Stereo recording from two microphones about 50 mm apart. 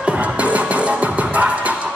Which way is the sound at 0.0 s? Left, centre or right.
Right.